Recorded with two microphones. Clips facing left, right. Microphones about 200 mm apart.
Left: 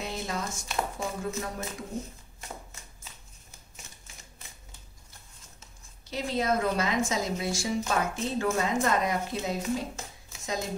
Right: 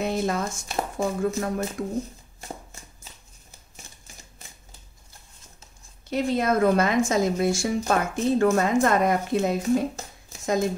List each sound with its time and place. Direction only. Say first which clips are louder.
0.0 s speech: right 8 dB; 55° right (ahead or behind)
2.4 s a sound: right 4 dB; 35° right (ahead or behind)
6.0 s a woman's voice: right 5 dB; 55° right (ahead or behind)